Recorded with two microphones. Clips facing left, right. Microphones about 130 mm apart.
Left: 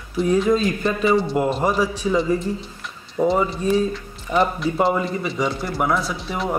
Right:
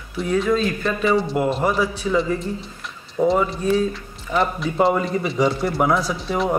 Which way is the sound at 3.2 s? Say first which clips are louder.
Right 1 dB; 5° left (ahead or behind).